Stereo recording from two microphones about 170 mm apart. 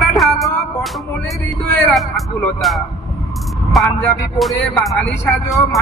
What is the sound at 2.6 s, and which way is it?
Speech, centre (ahead or behind).